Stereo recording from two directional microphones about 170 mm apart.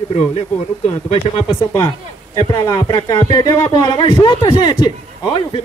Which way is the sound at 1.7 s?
20° left (ahead or behind).